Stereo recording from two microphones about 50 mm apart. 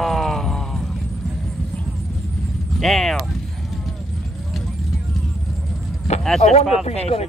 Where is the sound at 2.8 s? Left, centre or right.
Centre.